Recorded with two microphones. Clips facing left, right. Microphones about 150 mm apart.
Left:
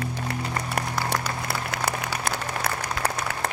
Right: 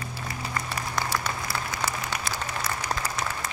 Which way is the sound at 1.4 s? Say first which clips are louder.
Left 2 dB; 65° left (ahead or behind).